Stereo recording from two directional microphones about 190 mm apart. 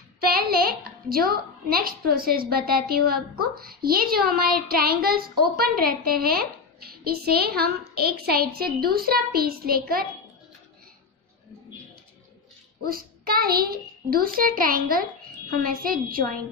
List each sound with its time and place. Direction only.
0.2 s a woman's voice: 55° right (ahead or behind)
12.8 s a child's voice: 50° right (ahead or behind)